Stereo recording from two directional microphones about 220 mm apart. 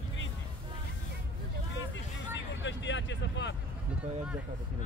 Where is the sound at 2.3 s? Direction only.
55° left (ahead or behind).